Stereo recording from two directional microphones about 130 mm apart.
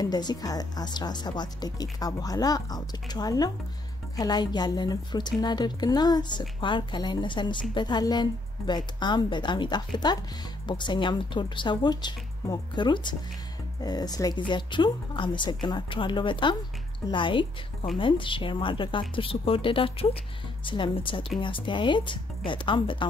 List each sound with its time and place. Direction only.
0.0 s speech: 30° left (ahead or behind)